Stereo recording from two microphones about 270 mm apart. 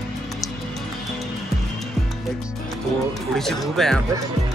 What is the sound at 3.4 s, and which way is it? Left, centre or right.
Speech, centre.